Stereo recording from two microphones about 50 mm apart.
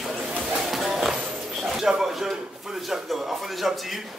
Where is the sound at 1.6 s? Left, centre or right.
Centre.